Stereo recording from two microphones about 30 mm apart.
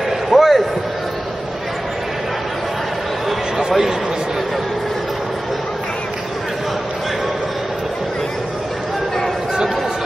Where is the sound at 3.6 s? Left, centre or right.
Centre.